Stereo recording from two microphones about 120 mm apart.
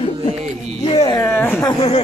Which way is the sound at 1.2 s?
20° left (ahead or behind).